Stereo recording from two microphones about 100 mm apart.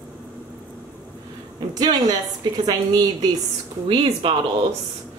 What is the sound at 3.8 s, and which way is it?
Speech, 65° right (ahead or behind).